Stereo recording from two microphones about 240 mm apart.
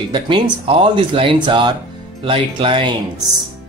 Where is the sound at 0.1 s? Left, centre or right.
Right.